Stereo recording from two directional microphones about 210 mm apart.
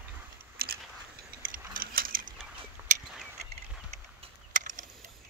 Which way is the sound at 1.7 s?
40° right (ahead or behind).